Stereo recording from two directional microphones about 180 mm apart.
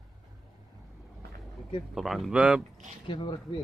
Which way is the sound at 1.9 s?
Centre (ahead or behind).